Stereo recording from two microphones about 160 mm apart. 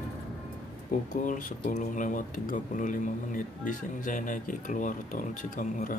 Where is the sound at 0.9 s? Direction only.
55° left (ahead or behind).